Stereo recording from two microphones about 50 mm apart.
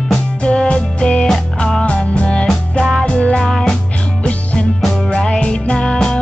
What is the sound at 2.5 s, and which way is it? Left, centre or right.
Music, centre.